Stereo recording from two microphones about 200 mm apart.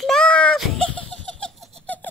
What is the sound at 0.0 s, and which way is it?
Baby laughter, 5° left (ahead or behind).